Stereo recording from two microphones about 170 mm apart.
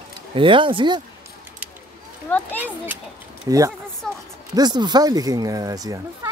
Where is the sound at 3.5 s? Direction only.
20° right (ahead or behind).